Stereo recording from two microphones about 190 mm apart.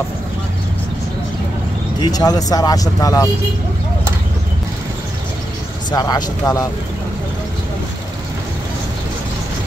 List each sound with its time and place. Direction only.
2.0 s speech: 20° left (ahead or behind)
5.9 s speech: 20° left (ahead or behind)